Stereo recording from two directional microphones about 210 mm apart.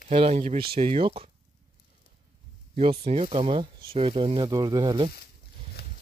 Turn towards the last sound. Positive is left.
turn(degrees=-20)  # may be behind; listen again after turning